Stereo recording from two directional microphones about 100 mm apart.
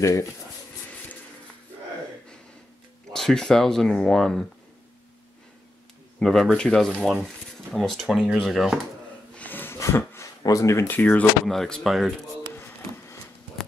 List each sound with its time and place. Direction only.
0.0 s speech: 30° left (ahead or behind)
3.1 s speech: 5° left (ahead or behind)
6.1 s speech: 5° left (ahead or behind)
6.9 s speech: 5° right (ahead or behind)
9.3 s a sound: 15° left (ahead or behind)
10.4 s speech: 35° left (ahead or behind); by 11.2 s 20° left (ahead or behind)
11.4 s speech: 5° left (ahead or behind)